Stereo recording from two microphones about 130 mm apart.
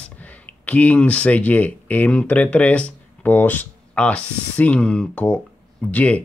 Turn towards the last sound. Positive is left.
turn(degrees=10)  # may be behind; listen again after turning